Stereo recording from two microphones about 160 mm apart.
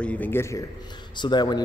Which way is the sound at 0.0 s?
10° left (ahead or behind).